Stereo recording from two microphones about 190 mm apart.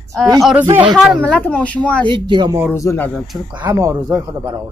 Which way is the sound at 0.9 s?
Centre (ahead or behind).